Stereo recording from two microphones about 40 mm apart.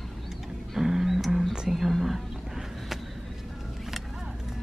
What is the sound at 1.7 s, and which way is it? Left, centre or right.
Whispering, centre.